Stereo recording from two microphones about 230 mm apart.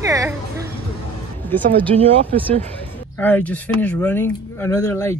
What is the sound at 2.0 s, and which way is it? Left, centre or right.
Speech, right.